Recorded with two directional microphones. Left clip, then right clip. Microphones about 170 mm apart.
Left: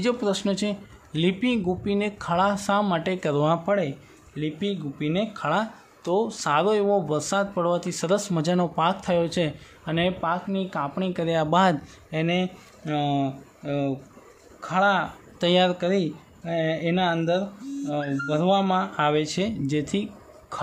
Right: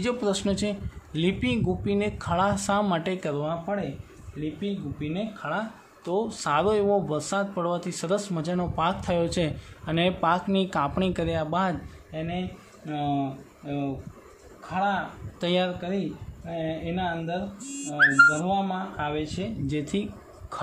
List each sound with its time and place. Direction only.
0.0 s speech: 10° left (ahead or behind)
3.3 s speech: 40° left (ahead or behind)
6.1 s speech: 15° left (ahead or behind)
10.2 s speech: 5° right (ahead or behind)
11.2 s speech: 25° left (ahead or behind)
12.1 s speech: 40° left (ahead or behind)
15.4 s speech: 15° left (ahead or behind)
16.4 s speech: 40° left (ahead or behind)
18.4 s speech: 45° left (ahead or behind)
19.6 s a sound: 15° left (ahead or behind)